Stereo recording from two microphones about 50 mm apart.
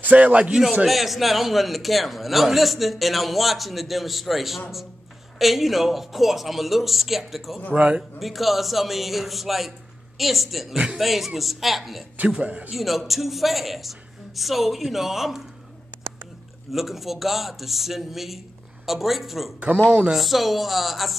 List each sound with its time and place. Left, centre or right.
0.0 s a man's voice: right
0.5 s a man's voice: centre
7.7 s speech: right
8.2 s a man's voice: centre
12.4 s speech: right
12.7 s a man's voice: centre
16.7 s a man's voice: centre
19.9 s speech: right
20.2 s a man's voice: centre